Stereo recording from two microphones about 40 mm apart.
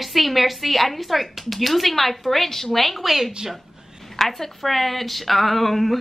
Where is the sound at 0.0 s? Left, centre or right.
Centre.